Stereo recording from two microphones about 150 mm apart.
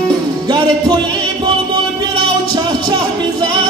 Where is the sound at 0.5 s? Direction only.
30° right (ahead or behind).